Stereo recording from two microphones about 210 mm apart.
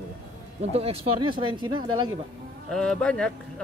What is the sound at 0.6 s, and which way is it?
Speech, 30° right (ahead or behind).